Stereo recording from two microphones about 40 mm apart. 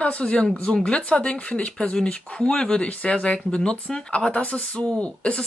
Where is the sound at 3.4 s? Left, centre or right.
Centre.